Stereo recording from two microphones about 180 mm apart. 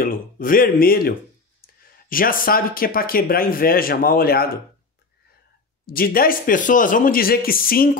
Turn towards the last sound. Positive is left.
turn(degrees=55)  # may be behind; listen again after turning